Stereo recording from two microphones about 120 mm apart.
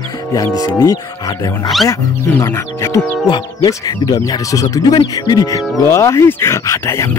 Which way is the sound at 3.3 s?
40° left (ahead or behind).